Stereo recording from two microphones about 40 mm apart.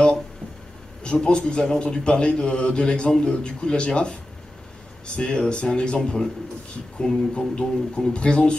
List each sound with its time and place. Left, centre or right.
1.0 s a man's voice: left
7.0 s a man's voice: left